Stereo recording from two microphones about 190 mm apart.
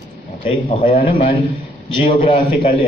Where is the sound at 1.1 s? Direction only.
30° left (ahead or behind).